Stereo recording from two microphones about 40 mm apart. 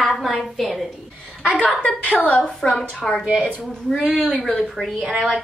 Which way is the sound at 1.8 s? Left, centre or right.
Left.